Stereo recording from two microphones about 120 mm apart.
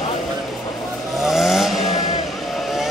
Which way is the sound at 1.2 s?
Centre (ahead or behind).